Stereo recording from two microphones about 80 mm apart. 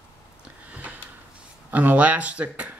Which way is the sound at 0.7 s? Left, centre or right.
Centre.